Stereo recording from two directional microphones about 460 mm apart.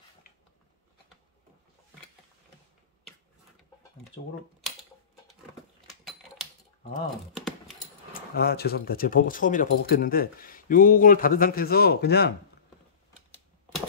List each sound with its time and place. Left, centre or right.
7.3 s typing: centre
8.1 s speech: centre
13.3 s typing: centre